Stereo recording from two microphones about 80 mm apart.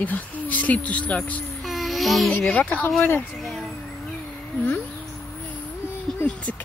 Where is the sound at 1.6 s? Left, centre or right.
Centre.